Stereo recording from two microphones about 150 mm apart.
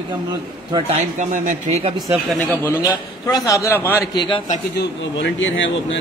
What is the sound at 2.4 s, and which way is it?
A man's voice, 15° left (ahead or behind).